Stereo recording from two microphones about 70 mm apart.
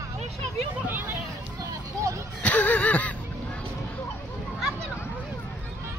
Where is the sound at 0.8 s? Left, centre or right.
Right.